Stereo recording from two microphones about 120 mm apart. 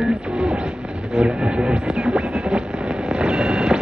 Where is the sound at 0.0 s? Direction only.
5° right (ahead or behind).